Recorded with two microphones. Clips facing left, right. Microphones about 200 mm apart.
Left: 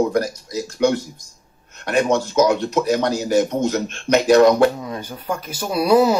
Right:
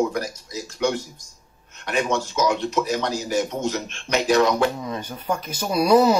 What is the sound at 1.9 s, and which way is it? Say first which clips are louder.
Speech: left 5 dB; 45° left (ahead or behind).